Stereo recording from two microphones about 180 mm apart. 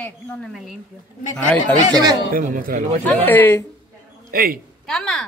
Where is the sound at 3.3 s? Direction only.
10° left (ahead or behind).